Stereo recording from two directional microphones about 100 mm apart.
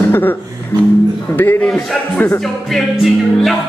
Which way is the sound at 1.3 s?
20° left (ahead or behind).